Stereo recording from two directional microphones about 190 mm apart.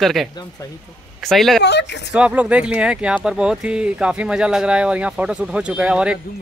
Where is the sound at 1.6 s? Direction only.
65° left (ahead or behind).